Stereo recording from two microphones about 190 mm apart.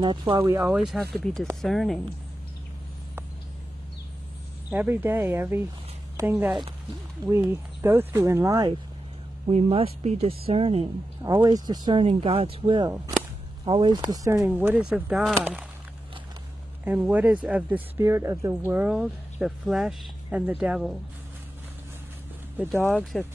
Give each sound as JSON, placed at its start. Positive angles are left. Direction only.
{"t": 0.0, "sound": "speech", "side_deg": -25}
{"t": 0.7, "sound": "speech", "side_deg": 0}
{"t": 4.6, "sound": "speech", "side_deg": -10}
{"t": 9.5, "sound": "speech", "side_deg": -30}
{"t": 16.8, "sound": "speech", "side_deg": -10}
{"t": 22.8, "sound": "speech", "side_deg": 5}